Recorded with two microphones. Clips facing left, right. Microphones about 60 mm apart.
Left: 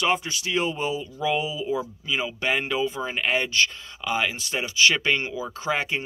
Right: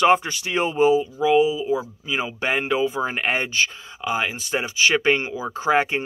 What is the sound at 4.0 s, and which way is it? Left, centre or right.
Speech, right.